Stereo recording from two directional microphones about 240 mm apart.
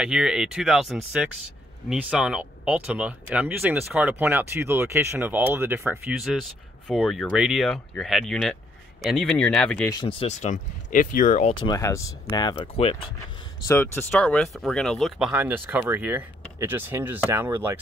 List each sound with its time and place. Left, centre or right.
0.0 s speech: centre
9.8 s speech: centre
11.5 s speech: centre
13.7 s speech: centre